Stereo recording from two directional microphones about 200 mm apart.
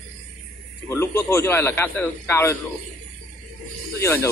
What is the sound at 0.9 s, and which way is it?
Speech, 10° left (ahead or behind).